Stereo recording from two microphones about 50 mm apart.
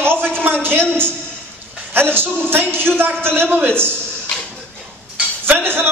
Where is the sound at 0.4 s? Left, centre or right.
Right.